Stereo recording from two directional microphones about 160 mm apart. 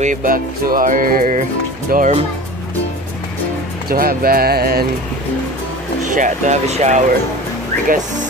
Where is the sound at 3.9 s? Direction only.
65° right (ahead or behind).